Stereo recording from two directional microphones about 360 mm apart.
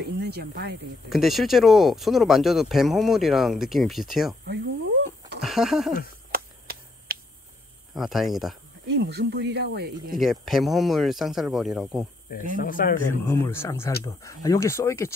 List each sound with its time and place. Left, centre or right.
0.0 s speech: right
1.1 s speech: centre
5.4 s speech: centre
6.3 s a sound: right
7.9 s speech: centre
8.8 s speech: right
10.1 s speech: centre
12.5 s speech: left
13.3 s speech: centre